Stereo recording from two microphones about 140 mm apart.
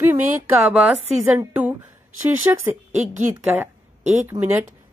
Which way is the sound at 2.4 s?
25° right (ahead or behind).